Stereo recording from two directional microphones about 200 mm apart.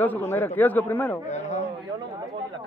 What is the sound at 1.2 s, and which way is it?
Speech, 35° left (ahead or behind).